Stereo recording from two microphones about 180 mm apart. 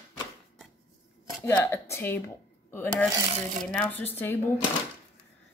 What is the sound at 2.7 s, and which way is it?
Speech, 10° left (ahead or behind).